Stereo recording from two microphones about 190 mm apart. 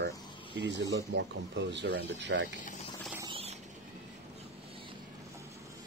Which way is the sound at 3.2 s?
25° right (ahead or behind).